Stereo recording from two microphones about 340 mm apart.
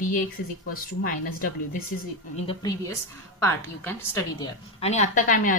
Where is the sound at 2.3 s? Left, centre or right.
Centre.